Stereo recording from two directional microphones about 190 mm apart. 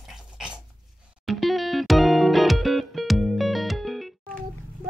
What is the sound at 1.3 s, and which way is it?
Music, centre (ahead or behind).